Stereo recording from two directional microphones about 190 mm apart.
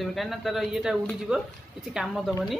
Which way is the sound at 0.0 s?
Centre (ahead or behind).